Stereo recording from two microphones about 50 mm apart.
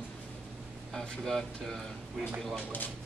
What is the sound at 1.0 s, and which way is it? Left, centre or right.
A man's voice, centre.